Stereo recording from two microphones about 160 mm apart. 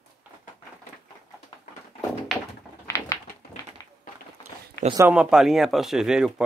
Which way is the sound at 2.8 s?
15° left (ahead or behind).